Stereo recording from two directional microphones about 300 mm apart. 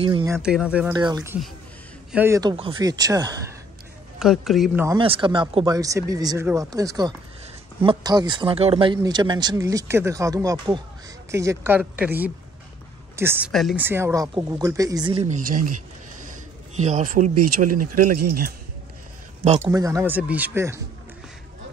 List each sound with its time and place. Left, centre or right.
0.0 s speech: centre
4.2 s speech: centre; by 15.6 s right
16.2 s a sound: right
17.3 s speech: right
19.6 s speech: centre